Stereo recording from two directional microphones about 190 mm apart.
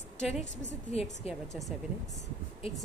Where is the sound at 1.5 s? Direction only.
Centre (ahead or behind).